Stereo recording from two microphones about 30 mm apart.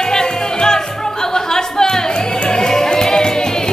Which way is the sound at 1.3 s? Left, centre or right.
Centre.